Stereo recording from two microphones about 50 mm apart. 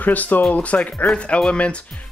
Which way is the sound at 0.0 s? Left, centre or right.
Left.